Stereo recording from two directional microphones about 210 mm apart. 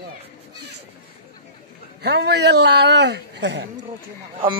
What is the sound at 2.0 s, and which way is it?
A man's voice, 50° right (ahead or behind).